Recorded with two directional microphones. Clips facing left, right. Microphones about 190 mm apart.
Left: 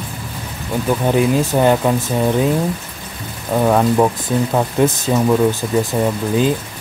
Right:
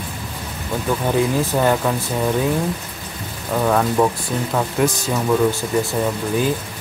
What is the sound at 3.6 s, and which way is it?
Speech, 20° left (ahead or behind).